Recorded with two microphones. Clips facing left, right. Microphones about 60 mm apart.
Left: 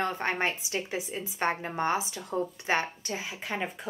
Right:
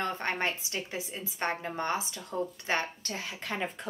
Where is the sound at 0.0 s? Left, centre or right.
Left.